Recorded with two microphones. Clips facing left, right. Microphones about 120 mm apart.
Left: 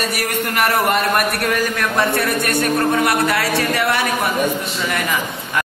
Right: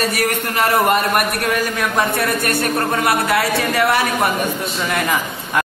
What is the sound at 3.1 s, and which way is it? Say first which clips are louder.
Speech: right 1 dB; 25° right (ahead or behind).